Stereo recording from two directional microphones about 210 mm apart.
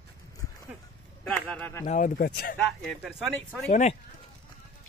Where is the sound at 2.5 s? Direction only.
5° left (ahead or behind).